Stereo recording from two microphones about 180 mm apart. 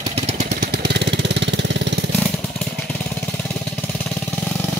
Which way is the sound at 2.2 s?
5° left (ahead or behind).